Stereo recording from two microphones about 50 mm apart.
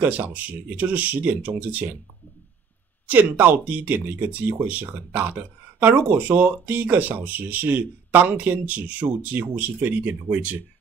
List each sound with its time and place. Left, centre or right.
0.0 s speech: right
3.1 s speech: right